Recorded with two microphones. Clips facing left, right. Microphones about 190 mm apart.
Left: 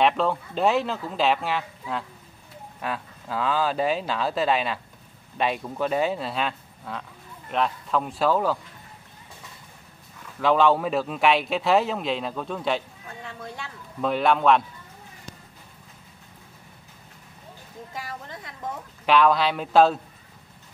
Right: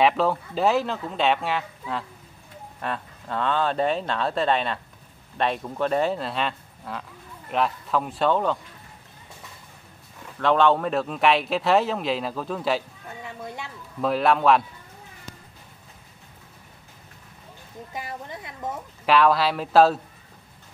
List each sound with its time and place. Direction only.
0.0 s a man's voice: centre (ahead or behind)
10.4 s a man's voice: centre (ahead or behind)
14.0 s a man's voice: centre (ahead or behind)
17.9 s a woman's voice: 15° right (ahead or behind)
19.0 s a man's voice: centre (ahead or behind)